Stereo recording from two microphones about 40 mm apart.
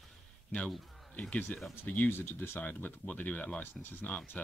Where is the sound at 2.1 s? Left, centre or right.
Left.